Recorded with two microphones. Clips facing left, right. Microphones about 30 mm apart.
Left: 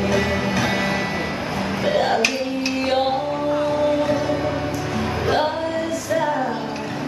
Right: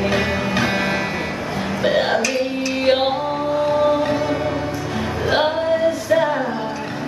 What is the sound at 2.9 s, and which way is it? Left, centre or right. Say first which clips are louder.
Music: right 4 dB; right.